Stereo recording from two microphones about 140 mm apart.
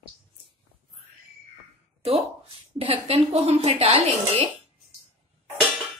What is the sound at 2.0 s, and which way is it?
A woman's voice, 45° right (ahead or behind).